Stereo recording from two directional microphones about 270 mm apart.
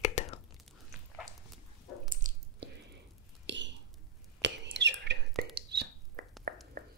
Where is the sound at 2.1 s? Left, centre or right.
Right.